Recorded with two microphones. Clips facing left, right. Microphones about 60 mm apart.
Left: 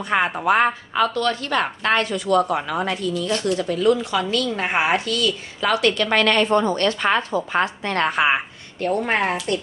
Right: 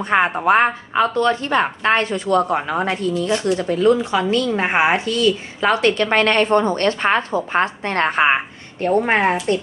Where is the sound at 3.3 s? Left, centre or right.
Right.